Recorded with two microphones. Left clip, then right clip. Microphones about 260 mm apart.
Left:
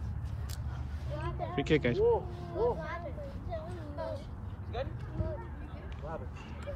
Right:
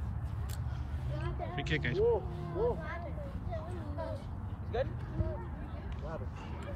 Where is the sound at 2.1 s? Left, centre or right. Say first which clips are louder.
Left 2 dB; centre.